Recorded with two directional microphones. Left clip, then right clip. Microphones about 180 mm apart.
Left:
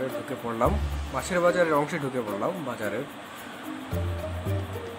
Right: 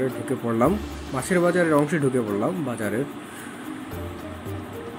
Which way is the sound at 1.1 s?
15° right (ahead or behind).